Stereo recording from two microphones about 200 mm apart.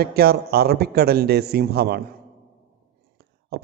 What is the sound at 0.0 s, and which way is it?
A man's voice, 50° right (ahead or behind).